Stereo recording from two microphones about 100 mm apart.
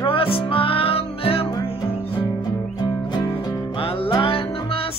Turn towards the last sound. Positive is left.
turn(degrees=65)  # may be behind; listen again after turning